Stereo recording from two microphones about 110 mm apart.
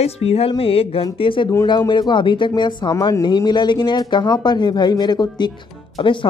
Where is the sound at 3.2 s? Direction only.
40° left (ahead or behind).